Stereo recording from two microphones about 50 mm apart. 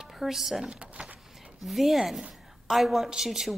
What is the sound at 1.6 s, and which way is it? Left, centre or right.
A woman's voice, centre.